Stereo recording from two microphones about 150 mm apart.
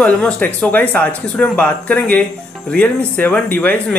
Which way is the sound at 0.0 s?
10° left (ahead or behind).